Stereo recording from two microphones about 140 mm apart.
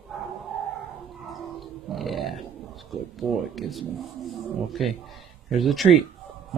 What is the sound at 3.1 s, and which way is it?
Speech, centre (ahead or behind).